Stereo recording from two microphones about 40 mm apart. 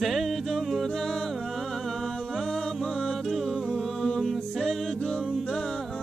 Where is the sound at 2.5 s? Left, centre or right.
Centre.